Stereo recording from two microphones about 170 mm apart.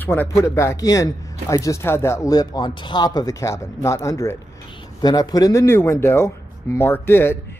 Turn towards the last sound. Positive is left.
turn(degrees=15)  # may be behind; listen again after turning